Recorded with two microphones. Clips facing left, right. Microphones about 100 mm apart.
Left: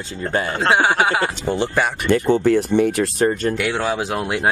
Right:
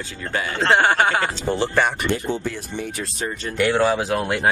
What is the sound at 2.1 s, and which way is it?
Speech, 55° left (ahead or behind).